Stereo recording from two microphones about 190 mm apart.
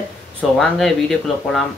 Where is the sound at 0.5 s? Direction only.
Centre (ahead or behind).